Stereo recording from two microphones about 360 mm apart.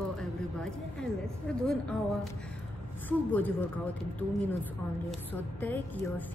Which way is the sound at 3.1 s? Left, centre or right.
Centre.